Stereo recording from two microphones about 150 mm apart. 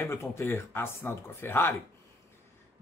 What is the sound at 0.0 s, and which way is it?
Speech, 20° left (ahead or behind).